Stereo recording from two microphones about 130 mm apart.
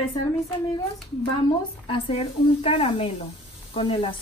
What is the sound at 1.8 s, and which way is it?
A woman's voice, 45° left (ahead or behind).